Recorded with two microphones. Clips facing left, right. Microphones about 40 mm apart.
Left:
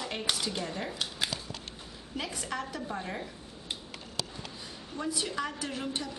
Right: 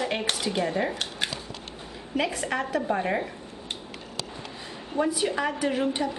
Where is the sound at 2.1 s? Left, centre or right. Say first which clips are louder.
Right 9 dB; right.